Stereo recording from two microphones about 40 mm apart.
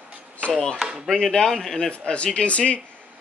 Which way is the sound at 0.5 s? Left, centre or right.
Centre.